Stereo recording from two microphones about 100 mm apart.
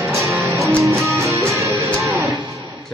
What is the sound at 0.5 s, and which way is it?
Music, 20° right (ahead or behind).